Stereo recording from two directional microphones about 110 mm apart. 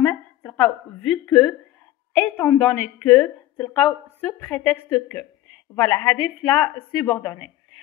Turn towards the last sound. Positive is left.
turn(degrees=10)  # may be behind; listen again after turning